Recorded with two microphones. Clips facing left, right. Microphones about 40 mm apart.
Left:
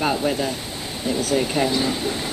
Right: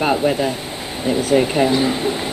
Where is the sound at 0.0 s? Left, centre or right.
Right.